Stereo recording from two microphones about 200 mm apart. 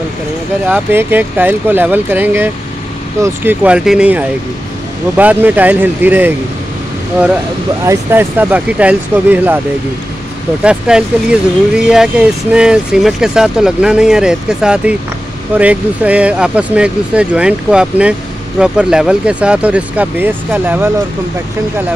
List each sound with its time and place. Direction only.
0.7 s speech: 10° right (ahead or behind)
7.8 s speech: 15° right (ahead or behind)
10.6 s speech: 5° right (ahead or behind)